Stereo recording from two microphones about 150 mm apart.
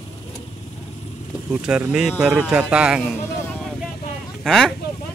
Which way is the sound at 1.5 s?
5° right (ahead or behind).